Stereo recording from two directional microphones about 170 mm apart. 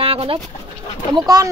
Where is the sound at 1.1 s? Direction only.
20° right (ahead or behind).